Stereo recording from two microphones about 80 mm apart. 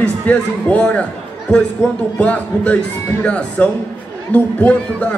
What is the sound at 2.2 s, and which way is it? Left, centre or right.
A man's voice, centre.